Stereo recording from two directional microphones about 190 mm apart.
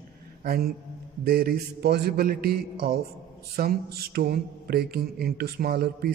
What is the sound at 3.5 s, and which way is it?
Mantra, 55° right (ahead or behind).